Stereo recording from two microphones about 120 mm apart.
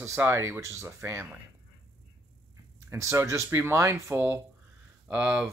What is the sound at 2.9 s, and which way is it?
Speech, 25° right (ahead or behind).